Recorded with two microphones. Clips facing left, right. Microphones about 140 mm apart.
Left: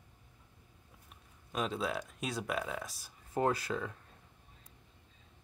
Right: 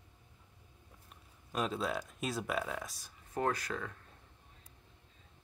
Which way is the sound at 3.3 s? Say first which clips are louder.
Left 3 dB; 20° left (ahead or behind).